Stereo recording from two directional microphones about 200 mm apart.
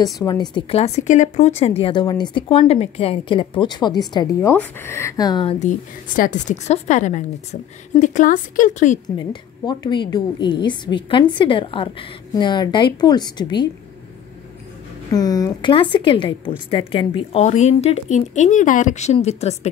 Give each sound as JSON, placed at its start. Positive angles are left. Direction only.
{"t": 0.0, "sound": "a woman's voice", "side_deg": 20}
{"t": 5.6, "sound": "speech", "side_deg": 40}
{"t": 9.0, "sound": "a woman's voice", "side_deg": 25}
{"t": 15.1, "sound": "a woman's voice", "side_deg": 20}